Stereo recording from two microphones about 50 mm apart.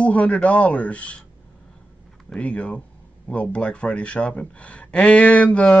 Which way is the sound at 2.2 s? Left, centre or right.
Left.